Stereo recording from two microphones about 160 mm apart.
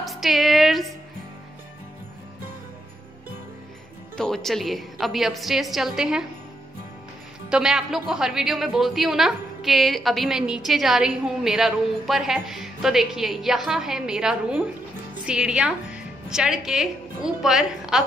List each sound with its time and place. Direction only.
0.0 s music: centre (ahead or behind)
4.2 s a woman's voice: centre (ahead or behind)
7.4 s a woman's voice: 5° right (ahead or behind)